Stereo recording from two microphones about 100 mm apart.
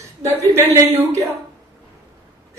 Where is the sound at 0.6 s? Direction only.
25° right (ahead or behind).